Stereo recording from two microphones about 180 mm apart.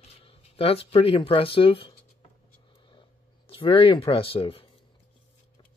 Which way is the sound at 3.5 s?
30° left (ahead or behind).